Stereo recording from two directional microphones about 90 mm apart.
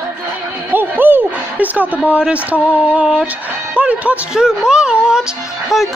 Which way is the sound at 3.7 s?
15° right (ahead or behind).